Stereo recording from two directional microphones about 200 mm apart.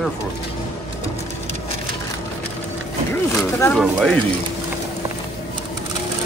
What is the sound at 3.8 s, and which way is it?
Speech, centre (ahead or behind).